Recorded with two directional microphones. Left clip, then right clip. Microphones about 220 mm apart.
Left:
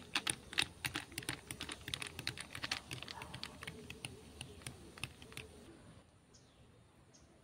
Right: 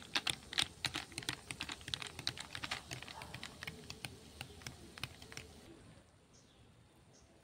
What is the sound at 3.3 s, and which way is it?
Typing, 15° right (ahead or behind).